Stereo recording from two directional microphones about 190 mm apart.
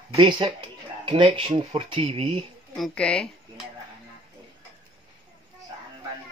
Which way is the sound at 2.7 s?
5° left (ahead or behind).